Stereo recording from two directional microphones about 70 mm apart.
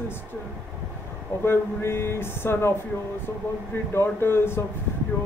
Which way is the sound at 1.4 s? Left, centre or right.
Left.